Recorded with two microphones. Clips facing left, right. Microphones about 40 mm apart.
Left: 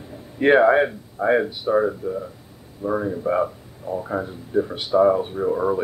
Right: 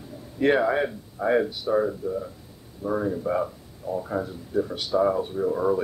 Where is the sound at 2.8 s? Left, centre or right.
Centre.